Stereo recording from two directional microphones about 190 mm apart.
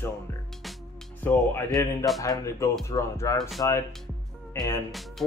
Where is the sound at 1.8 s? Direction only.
15° left (ahead or behind).